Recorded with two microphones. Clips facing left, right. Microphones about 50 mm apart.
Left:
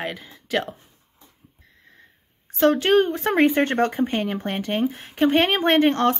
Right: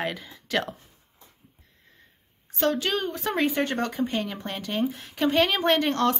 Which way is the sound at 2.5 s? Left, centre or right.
Left.